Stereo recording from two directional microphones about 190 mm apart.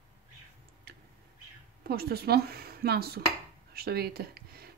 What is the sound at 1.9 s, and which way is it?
Speech, 55° right (ahead or behind).